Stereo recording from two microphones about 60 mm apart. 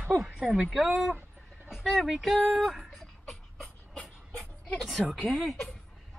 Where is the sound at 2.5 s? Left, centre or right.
Centre.